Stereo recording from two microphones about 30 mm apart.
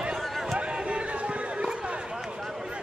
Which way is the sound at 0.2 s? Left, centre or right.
Centre.